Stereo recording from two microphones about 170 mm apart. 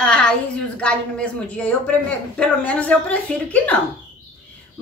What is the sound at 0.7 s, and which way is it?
Speech, 5° left (ahead or behind).